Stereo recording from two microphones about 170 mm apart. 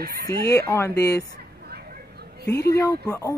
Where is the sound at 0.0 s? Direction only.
60° right (ahead or behind).